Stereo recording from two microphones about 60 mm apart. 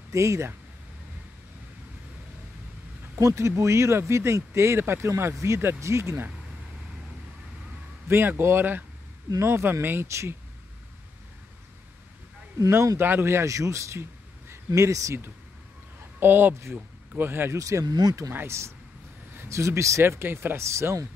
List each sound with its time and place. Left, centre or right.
0.1 s speech: right
3.2 s speech: right
8.1 s a man's voice: right
12.5 s speech: right
13.0 s speech: right
14.7 s speech: right
16.2 s a man's voice: right
16.7 s a sound: right
17.3 s a man's voice: right
17.6 s speech: right
19.3 s a sound: right
19.6 s speech: right
20.0 s speech: right